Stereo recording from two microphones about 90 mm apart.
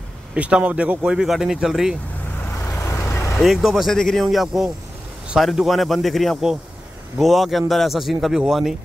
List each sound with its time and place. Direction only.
0.3 s a man's voice: 15° right (ahead or behind)
2.8 s vehicle: 30° left (ahead or behind)
3.3 s speech: centre (ahead or behind)